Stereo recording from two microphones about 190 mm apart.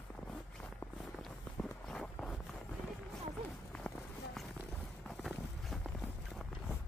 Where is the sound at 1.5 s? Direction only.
5° left (ahead or behind).